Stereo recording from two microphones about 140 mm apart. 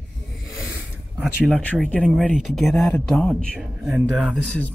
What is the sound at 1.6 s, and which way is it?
Speech, 10° left (ahead or behind).